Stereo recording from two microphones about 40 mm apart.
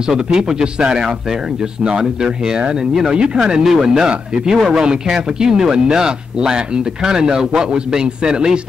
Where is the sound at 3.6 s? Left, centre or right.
Centre.